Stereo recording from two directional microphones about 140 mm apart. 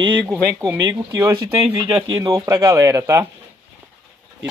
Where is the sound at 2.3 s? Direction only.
25° right (ahead or behind).